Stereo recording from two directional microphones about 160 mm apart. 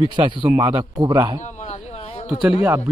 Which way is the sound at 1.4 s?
45° left (ahead or behind).